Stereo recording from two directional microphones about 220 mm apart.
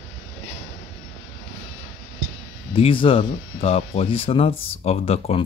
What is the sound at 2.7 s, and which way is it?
Speech, 25° left (ahead or behind).